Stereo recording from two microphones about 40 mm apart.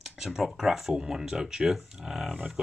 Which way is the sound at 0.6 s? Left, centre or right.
Centre.